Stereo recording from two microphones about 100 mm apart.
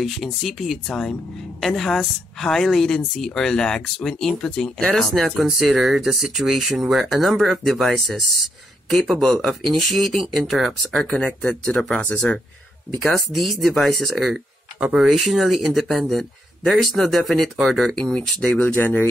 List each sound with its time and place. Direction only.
0.0 s a woman's voice: centre (ahead or behind)
11.1 s speech: 15° left (ahead or behind)
12.0 s speech: 15° left (ahead or behind)
13.0 s a woman's voice: 5° left (ahead or behind)